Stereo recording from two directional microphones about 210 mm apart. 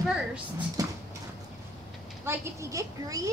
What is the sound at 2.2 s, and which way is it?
A woman's voice, 15° right (ahead or behind).